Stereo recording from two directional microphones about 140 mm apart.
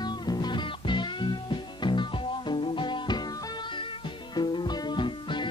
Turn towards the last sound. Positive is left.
turn(degrees=35)  # may be behind; listen again after turning